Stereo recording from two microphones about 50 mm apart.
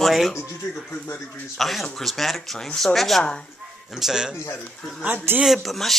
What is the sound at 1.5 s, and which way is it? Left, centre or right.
Speech, centre.